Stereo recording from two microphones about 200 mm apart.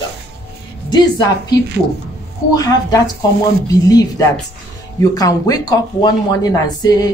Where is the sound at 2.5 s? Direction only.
20° left (ahead or behind).